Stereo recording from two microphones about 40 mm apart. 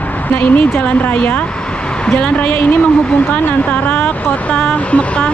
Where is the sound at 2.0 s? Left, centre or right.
Left.